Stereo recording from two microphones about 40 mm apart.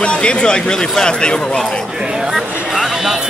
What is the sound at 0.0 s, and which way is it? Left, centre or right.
Speech, left.